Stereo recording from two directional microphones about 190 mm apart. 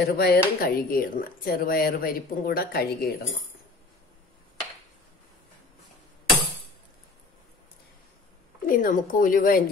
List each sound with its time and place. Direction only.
0.0 s speech: 55° left (ahead or behind)
8.6 s speech: 45° left (ahead or behind)